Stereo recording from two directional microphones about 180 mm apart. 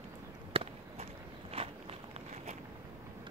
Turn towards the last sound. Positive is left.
turn(degrees=-35)  # may be behind; listen again after turning